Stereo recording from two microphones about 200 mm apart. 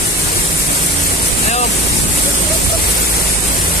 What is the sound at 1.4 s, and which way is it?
Waves, 35° left (ahead or behind).